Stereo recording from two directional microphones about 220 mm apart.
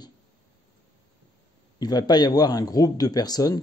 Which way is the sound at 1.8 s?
20° left (ahead or behind).